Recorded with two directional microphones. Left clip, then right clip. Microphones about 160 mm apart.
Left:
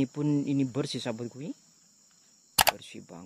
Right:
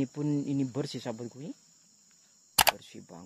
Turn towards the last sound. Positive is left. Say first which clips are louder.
# left 3 dB
turn(degrees=15)  # may be behind; listen again after turning